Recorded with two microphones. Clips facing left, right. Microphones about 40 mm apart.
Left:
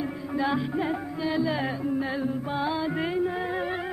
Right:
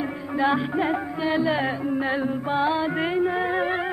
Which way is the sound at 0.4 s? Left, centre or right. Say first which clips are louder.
Right 5 dB; right.